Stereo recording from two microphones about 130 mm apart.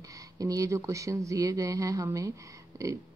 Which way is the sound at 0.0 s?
25° right (ahead or behind).